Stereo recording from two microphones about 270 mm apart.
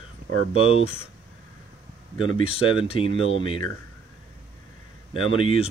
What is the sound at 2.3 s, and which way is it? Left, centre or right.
Speech, left.